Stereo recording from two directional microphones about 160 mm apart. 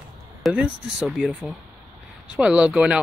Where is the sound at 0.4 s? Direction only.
Centre (ahead or behind).